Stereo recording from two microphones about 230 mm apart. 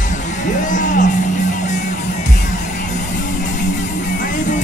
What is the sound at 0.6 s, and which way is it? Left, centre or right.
Music, left.